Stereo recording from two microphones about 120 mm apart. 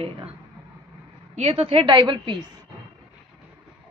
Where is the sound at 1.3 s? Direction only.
60° right (ahead or behind); by 2.3 s 40° right (ahead or behind).